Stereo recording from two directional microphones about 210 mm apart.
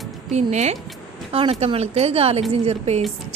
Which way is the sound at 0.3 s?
35° right (ahead or behind).